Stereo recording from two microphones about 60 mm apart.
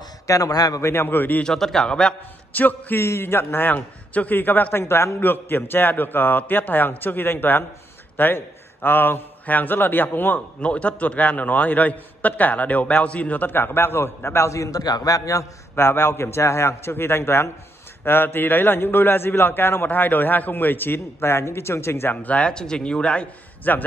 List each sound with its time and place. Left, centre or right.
0.3 s a man's voice: left
0.8 s a man's voice: left
1.4 s speech: centre
2.5 s a man's voice: left
3.0 s a man's voice: left
4.7 s a man's voice: left
15.7 s a man's voice: left
22.1 s speech: left
23.7 s a man's voice: left